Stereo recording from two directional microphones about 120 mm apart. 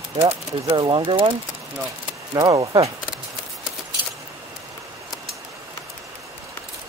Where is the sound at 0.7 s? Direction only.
40° right (ahead or behind).